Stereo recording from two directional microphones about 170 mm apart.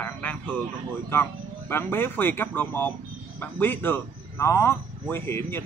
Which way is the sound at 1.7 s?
15° left (ahead or behind).